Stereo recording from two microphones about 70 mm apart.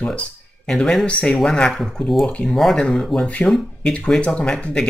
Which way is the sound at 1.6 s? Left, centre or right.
Centre.